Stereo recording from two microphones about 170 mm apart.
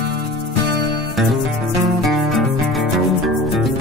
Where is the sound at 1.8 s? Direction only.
Centre (ahead or behind).